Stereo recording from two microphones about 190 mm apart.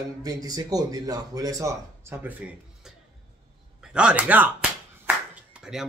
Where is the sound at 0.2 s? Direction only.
20° right (ahead or behind).